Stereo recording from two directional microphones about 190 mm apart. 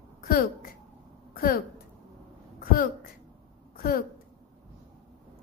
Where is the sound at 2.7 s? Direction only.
45° left (ahead or behind).